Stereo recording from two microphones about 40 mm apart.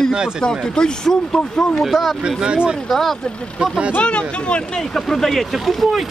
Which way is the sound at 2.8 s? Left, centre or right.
Centre.